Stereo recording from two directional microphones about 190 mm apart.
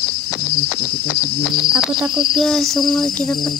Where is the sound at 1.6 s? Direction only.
5° right (ahead or behind).